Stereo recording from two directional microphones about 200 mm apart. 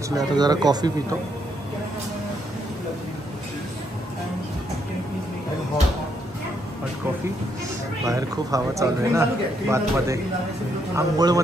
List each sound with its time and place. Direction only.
0.1 s speech: 20° right (ahead or behind)
8.0 s a man's voice: 15° right (ahead or behind)